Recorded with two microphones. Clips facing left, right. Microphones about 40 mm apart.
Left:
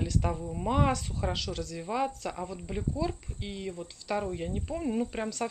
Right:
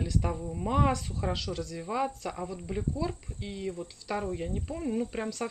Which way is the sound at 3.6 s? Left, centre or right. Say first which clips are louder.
Right 2 dB; centre.